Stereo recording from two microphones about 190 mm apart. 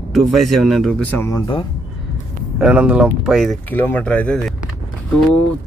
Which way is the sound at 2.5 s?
5° right (ahead or behind).